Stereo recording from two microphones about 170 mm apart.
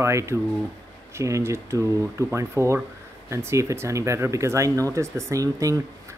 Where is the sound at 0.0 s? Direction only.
15° right (ahead or behind).